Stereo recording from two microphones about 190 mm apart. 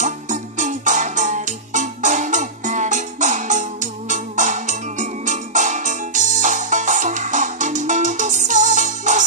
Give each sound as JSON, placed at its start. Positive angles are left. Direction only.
{"t": 0.0, "sound": "music", "side_deg": -40}